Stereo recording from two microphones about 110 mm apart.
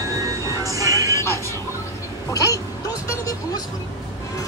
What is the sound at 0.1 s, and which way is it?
Train, 30° right (ahead or behind).